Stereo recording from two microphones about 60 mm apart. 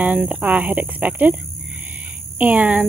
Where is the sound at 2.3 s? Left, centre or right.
Right.